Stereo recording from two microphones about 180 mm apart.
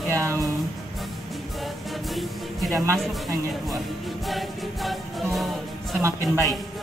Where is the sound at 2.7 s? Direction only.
15° right (ahead or behind).